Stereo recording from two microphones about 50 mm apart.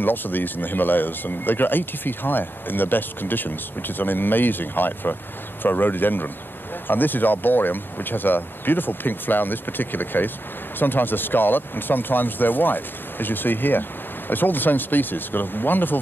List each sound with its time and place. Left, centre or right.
0.0 s speech: left